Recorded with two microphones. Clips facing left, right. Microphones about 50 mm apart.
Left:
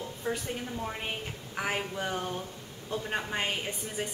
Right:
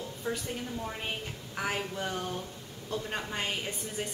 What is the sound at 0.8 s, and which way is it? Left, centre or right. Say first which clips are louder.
A woman's voice: left 1 dB; centre.